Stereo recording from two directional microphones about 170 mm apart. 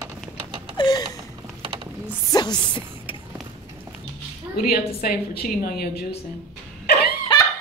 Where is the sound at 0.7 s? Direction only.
25° left (ahead or behind).